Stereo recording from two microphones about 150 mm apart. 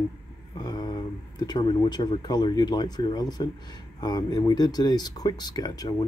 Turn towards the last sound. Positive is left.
turn(degrees=25)  # may be behind; listen again after turning